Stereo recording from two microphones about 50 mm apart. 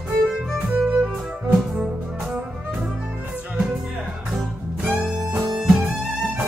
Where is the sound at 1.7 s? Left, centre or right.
Centre.